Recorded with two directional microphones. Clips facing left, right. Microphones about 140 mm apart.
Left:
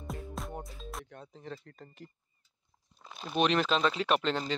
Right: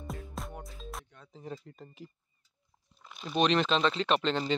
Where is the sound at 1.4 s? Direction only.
10° right (ahead or behind).